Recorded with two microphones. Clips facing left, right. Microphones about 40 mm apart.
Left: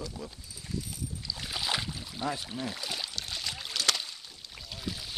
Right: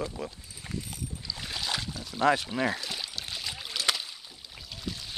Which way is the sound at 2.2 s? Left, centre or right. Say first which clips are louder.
Right 10 dB; right.